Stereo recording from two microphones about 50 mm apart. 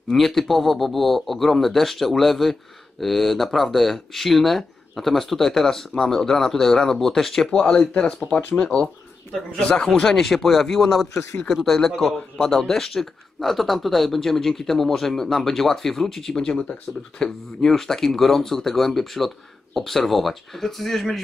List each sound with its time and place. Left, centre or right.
0.1 s speech: centre
9.9 s speech: centre
16.9 s speech: left
17.2 s speech: centre